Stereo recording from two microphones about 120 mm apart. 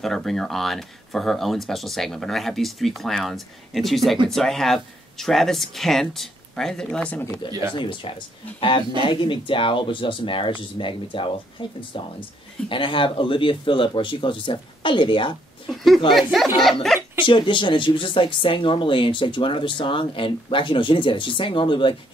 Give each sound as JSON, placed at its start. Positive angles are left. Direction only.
{"t": 0.0, "sound": "speech", "side_deg": 5}
{"t": 7.7, "sound": "speech", "side_deg": 45}
{"t": 12.6, "sound": "speech", "side_deg": 45}
{"t": 15.7, "sound": "speech", "side_deg": 0}
{"t": 16.9, "sound": "a sound", "side_deg": 5}
{"t": 17.3, "sound": "speech", "side_deg": 45}